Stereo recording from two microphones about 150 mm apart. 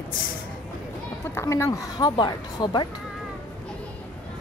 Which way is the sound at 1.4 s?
15° left (ahead or behind).